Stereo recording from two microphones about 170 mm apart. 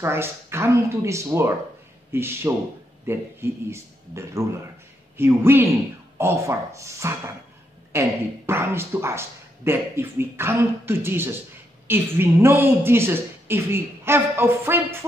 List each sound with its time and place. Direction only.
0.0 s a woman's voice: 15° right (ahead or behind)